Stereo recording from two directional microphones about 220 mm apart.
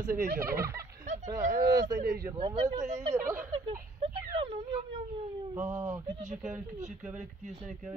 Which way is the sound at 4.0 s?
25° right (ahead or behind).